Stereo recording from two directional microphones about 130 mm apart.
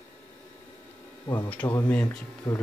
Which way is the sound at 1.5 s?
10° left (ahead or behind).